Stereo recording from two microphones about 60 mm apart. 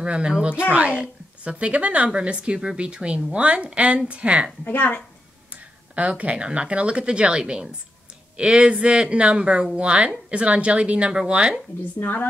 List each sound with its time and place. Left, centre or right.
0.0 s a woman's voice: centre
4.6 s speech: left
5.5 s speech: right
12.0 s speech: left